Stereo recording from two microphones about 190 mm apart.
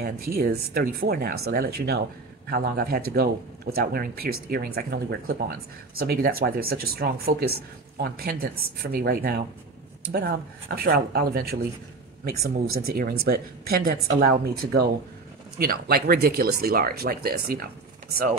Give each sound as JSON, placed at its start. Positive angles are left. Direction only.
{"t": 0.0, "sound": "speech", "side_deg": -55}
{"t": 12.8, "sound": "speech", "side_deg": -55}